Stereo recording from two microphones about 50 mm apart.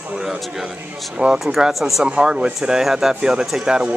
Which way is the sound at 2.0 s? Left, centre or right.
Centre.